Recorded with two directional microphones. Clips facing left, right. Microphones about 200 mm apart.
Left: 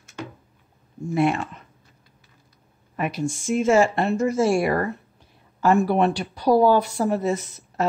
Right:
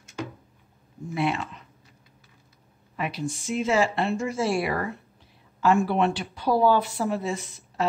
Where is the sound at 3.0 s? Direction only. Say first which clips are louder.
Left 4 dB; 50° left (ahead or behind).